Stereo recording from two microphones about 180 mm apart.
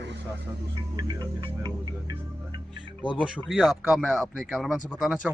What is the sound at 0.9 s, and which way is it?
Music, 25° right (ahead or behind).